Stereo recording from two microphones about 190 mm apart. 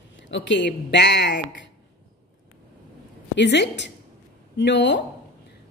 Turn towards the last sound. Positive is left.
turn(degrees=65)  # may be behind; listen again after turning